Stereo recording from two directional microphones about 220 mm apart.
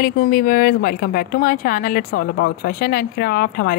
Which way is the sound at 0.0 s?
40° left (ahead or behind).